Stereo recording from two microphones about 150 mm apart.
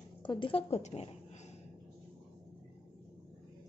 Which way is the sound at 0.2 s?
35° left (ahead or behind).